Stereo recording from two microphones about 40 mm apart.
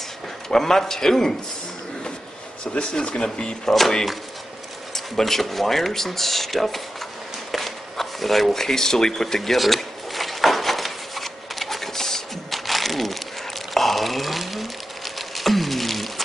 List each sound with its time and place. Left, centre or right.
0.5 s a man's voice: centre
2.6 s speech: left
3.9 s a man's voice: centre
7.5 s a sound: centre